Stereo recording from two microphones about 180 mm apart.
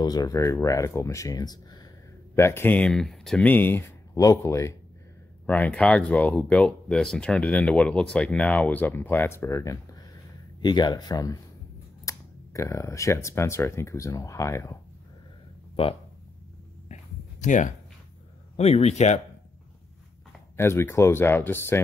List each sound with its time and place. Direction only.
0.0 s speech: 20° left (ahead or behind)
16.9 s a sound: 45° left (ahead or behind)
18.6 s speech: 35° left (ahead or behind)
20.5 s speech: 15° left (ahead or behind)